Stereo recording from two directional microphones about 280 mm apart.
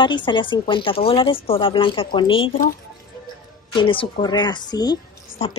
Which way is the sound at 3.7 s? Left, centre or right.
Centre.